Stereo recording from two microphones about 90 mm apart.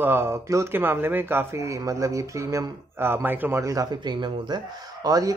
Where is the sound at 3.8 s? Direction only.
55° right (ahead or behind).